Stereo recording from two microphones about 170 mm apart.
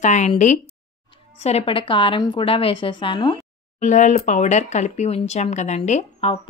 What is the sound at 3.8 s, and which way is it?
Speech, 45° left (ahead or behind).